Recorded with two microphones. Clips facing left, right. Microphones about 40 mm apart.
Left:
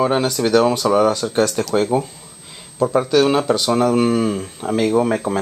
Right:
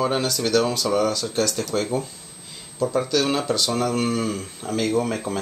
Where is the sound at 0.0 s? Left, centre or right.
Centre.